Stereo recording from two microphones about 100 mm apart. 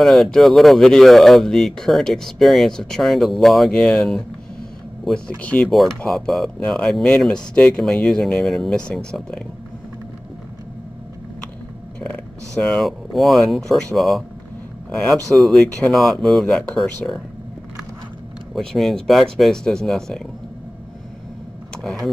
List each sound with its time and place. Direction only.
0.0 s speech: centre (ahead or behind)
5.4 s speech: 15° left (ahead or behind)
5.9 s speech: 5° left (ahead or behind)
12.0 s a sound: 15° left (ahead or behind)
12.7 s speech: centre (ahead or behind)
15.3 s speech: centre (ahead or behind)
18.5 s speech: 5° left (ahead or behind)
21.8 s speech: centre (ahead or behind)